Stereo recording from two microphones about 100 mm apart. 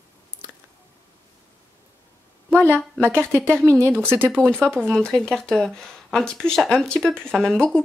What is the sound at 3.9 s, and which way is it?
Speech, 20° right (ahead or behind).